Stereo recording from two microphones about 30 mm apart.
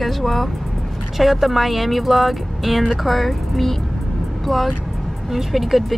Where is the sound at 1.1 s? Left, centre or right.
Centre.